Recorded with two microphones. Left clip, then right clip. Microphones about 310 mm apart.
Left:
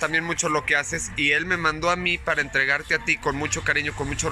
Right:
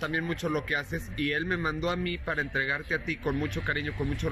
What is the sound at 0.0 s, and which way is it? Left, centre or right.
Speech, left.